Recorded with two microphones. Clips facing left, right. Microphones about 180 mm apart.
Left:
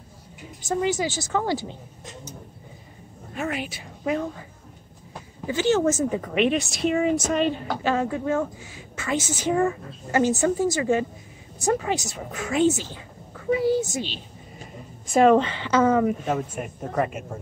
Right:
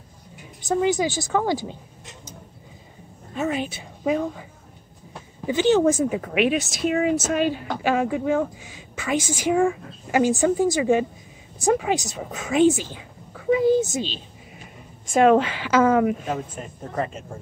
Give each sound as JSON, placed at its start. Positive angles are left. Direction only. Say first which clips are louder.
{"t": 0.6, "sound": "a woman's voice", "louder": "right 3 dB", "side_deg": -15}
{"t": 3.5, "sound": "a woman's voice", "louder": "right 4 dB", "side_deg": -20}
{"t": 5.5, "sound": "a woman's voice", "louder": "right 3 dB", "side_deg": -20}
{"t": 13.5, "sound": "a sound", "louder": "right 3 dB", "side_deg": -20}
{"t": 15.1, "sound": "a woman's voice", "louder": "even", "side_deg": -5}
{"t": 17.0, "sound": "speech", "louder": "left 2 dB", "side_deg": 10}